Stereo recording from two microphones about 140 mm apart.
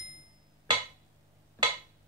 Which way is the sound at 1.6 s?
30° right (ahead or behind).